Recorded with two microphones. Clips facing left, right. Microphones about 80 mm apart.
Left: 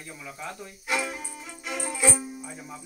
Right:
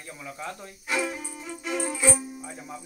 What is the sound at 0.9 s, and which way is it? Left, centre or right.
Music, centre.